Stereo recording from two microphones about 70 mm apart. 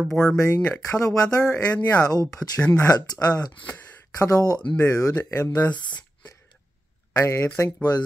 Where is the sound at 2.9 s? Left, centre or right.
Left.